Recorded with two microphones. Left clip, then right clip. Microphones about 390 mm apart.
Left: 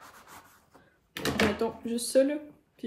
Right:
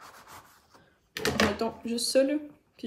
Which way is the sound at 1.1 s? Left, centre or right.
Centre.